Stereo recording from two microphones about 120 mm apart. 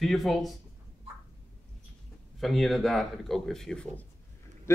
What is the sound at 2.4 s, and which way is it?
Speech, centre (ahead or behind).